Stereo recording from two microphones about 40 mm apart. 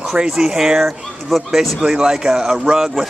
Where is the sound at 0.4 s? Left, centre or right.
Centre.